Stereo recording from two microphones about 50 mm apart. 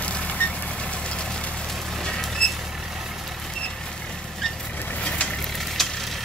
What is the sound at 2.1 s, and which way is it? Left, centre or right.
Vehicle, centre.